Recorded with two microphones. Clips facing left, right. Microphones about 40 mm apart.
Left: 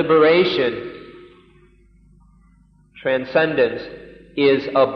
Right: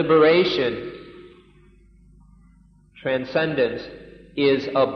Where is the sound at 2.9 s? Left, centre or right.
Centre.